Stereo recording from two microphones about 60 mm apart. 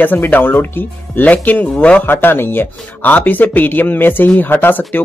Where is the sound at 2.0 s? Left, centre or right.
Left.